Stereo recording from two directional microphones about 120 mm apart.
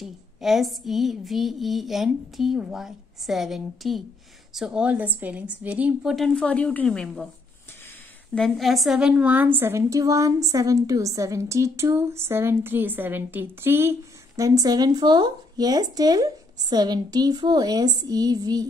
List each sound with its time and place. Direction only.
0.0 s a sound: centre (ahead or behind)
4.6 s a woman's voice: 5° right (ahead or behind)
6.1 s a woman's voice: 5° left (ahead or behind)
8.4 s a woman's voice: centre (ahead or behind); by 18.7 s 35° right (ahead or behind)